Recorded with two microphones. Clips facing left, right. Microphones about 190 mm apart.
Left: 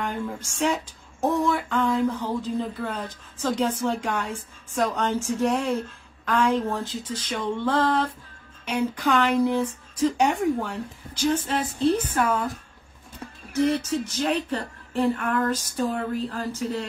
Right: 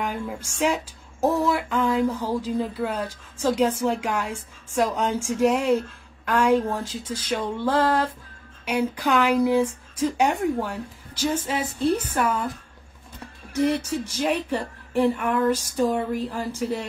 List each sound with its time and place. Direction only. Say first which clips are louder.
0.0 s speech: even; 10° right (ahead or behind)
13.6 s speech: even; 15° right (ahead or behind)